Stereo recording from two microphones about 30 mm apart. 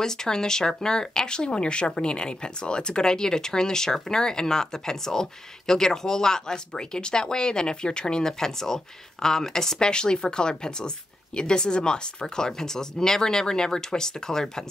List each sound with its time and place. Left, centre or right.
0.0 s speech: centre
9.8 s speech: left